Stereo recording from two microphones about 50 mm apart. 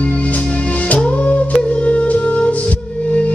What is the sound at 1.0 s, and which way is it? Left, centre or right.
Music, left.